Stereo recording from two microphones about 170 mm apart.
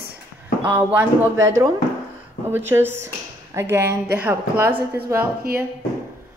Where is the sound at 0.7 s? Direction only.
10° right (ahead or behind).